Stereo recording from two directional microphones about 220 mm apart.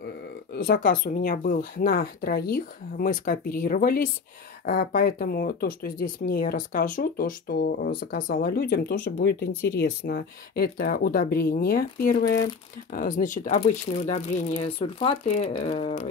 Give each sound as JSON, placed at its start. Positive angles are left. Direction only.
{"t": 0.0, "sound": "speech", "side_deg": 45}
{"t": 9.5, "sound": "speech", "side_deg": 10}
{"t": 9.8, "sound": "speech", "side_deg": 45}